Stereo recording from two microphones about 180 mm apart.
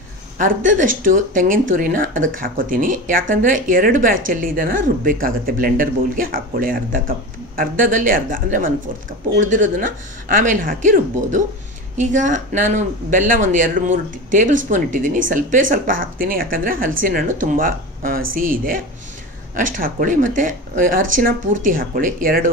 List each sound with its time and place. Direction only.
0.4 s speech: 45° right (ahead or behind)